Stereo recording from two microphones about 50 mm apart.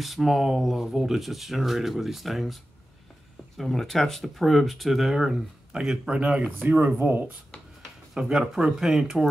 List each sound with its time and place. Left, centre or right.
0.0 s speech: centre; by 7.0 s right
7.0 s speech: right
8.1 s speech: centre